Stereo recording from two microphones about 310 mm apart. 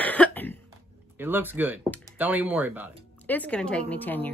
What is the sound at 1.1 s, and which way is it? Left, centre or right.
Speech, centre.